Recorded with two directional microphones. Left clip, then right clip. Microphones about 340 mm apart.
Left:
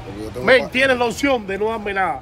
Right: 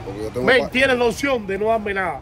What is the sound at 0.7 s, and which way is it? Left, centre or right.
Speech, centre.